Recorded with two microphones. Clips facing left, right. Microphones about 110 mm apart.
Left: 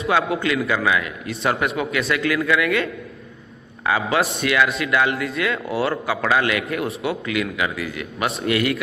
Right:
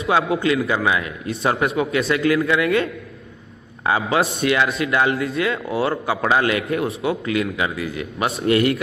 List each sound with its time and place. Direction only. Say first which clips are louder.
0.1 s a man's voice: right 2 dB; 25° right (ahead or behind)